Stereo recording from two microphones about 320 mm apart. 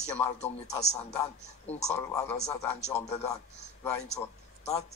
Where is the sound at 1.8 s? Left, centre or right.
Centre.